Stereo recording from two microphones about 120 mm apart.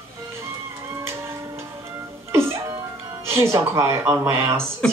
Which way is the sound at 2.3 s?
20° right (ahead or behind).